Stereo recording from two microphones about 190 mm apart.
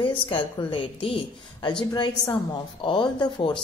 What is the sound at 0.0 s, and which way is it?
A woman's voice, 25° left (ahead or behind).